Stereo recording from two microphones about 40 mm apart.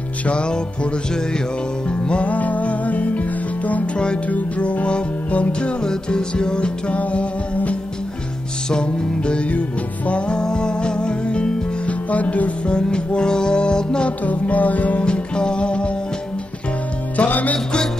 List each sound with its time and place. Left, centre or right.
0.3 s music: left
1.9 s music: left
7.0 s music: left
8.6 s music: left
12.6 s music: left
14.2 s music: left
15.0 s music: left
17.3 s music: left